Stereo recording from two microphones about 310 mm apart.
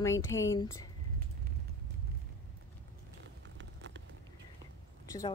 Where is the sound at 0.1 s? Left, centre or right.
Left.